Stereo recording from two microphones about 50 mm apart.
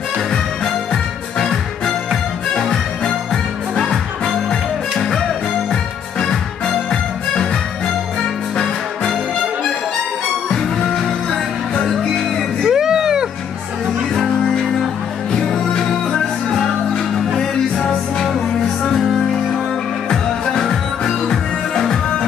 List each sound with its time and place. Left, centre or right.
1.4 s music: centre
4.5 s music: centre
10.5 s music: centre
12.7 s music: centre
14.1 s music: centre